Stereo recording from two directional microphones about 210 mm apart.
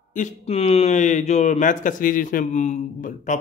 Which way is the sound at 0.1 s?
35° left (ahead or behind).